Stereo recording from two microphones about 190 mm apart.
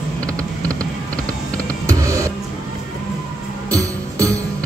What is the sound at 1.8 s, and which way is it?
Music, 15° right (ahead or behind).